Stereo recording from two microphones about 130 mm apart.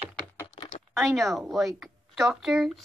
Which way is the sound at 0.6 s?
55° left (ahead or behind).